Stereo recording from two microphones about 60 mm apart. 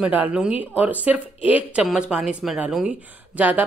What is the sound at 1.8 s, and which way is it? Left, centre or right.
Speech, centre.